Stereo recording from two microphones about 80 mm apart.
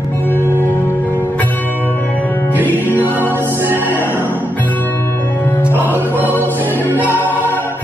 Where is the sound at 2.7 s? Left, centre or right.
Left.